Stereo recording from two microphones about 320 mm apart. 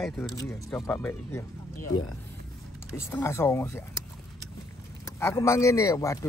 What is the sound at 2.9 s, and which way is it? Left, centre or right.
Speech, centre.